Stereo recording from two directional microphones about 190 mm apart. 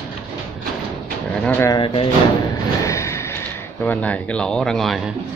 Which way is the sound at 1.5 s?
10° left (ahead or behind).